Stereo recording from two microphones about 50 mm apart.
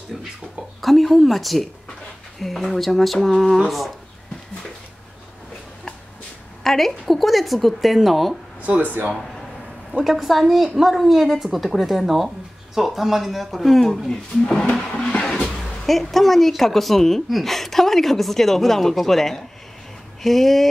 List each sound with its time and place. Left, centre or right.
0.7 s a woman's voice: centre
6.6 s a woman's voice: centre
10.0 s a woman's voice: centre
14.5 s a sound: centre
15.0 s vehicle: centre
15.9 s a woman's voice: centre